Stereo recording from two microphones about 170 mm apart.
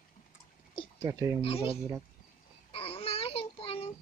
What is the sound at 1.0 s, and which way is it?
Speech, 20° right (ahead or behind).